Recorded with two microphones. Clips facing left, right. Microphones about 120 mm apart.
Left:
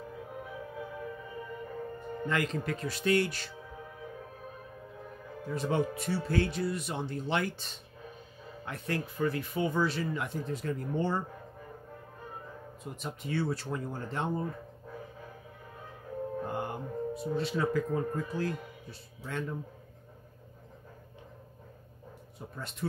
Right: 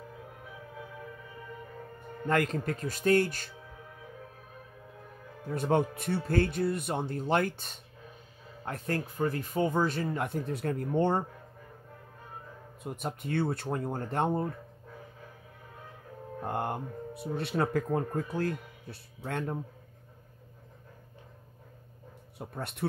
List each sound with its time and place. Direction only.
2.2 s speech: 45° right (ahead or behind)
5.5 s speech: 55° right (ahead or behind)
12.8 s speech: 55° right (ahead or behind)
16.4 s music: 55° right (ahead or behind)
17.4 s speech: 60° right (ahead or behind)
22.6 s a man's voice: 60° right (ahead or behind)